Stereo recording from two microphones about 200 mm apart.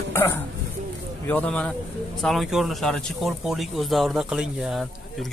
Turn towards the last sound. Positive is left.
turn(degrees=-5)  # may be behind; listen again after turning